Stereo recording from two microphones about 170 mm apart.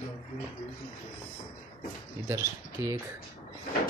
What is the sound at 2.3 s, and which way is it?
Speech, 15° right (ahead or behind).